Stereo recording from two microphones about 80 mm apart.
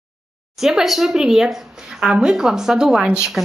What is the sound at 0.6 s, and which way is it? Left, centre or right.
A woman's voice, centre.